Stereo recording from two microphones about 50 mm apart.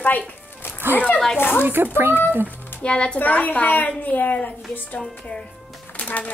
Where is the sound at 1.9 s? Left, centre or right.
Right.